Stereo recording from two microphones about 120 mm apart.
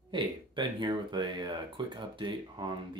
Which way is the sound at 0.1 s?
40° right (ahead or behind).